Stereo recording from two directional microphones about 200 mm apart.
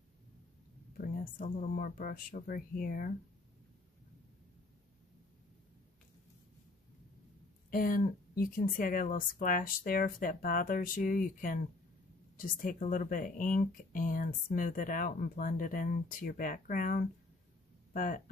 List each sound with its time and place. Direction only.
0.9 s speech: 45° left (ahead or behind)
7.7 s speech: 45° left (ahead or behind)